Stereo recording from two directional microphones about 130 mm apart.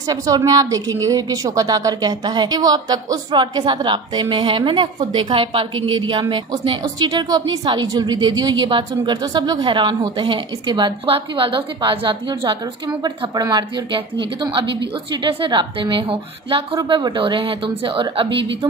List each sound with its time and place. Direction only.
0.0 s a woman's voice: 30° right (ahead or behind)